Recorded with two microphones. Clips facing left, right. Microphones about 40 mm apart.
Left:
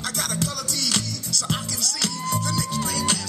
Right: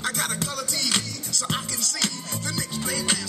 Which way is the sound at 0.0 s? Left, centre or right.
Centre.